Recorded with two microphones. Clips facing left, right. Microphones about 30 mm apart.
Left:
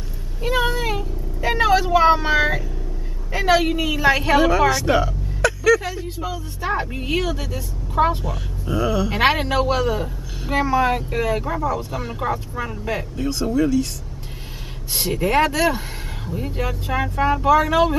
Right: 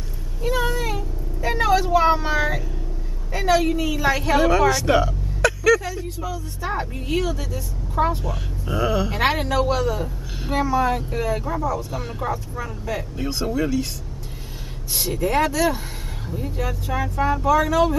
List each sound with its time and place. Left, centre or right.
0.4 s vehicle: left
3.3 s speech: left
4.4 s speech: centre
5.9 s a woman's voice: left
8.6 s speech: centre
9.1 s speech: left
10.5 s speech: left
11.9 s speech: centre
12.2 s speech: left
13.1 s speech: centre
15.0 s speech: left